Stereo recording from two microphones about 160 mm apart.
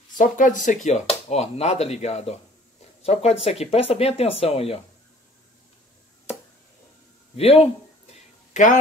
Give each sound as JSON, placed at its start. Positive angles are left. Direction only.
{"t": 0.2, "sound": "speech", "side_deg": 55}
{"t": 7.3, "sound": "speech", "side_deg": 40}
{"t": 8.1, "sound": "a sound", "side_deg": 50}